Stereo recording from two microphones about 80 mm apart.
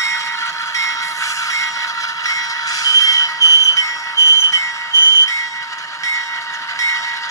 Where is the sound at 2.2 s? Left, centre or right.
Left.